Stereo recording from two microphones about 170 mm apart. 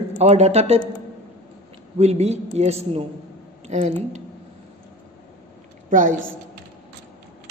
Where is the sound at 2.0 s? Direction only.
40° right (ahead or behind).